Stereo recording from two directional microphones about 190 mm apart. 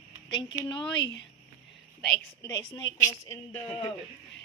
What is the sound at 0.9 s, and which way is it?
Speech, 70° left (ahead or behind).